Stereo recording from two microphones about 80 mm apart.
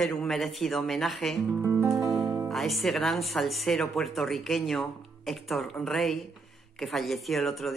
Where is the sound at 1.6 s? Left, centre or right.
Right.